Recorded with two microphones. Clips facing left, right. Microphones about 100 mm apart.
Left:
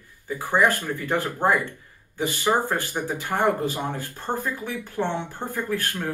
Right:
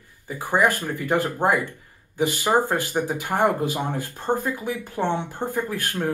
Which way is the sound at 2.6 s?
15° right (ahead or behind).